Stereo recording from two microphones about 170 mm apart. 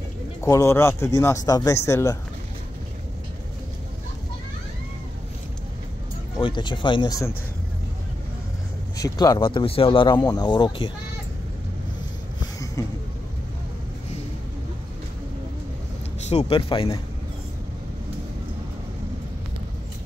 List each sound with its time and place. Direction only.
0.4 s speech: 15° left (ahead or behind)
6.4 s speech: 25° left (ahead or behind)
8.9 s speech: 20° left (ahead or behind)
12.8 s vehicle: 15° left (ahead or behind)
16.3 s speech: 35° left (ahead or behind)